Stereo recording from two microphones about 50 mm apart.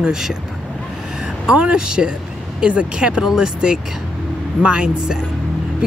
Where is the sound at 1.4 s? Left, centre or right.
Centre.